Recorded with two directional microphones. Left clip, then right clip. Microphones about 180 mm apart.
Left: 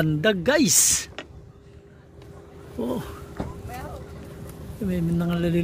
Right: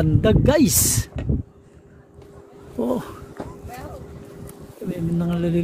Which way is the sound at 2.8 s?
50° right (ahead or behind).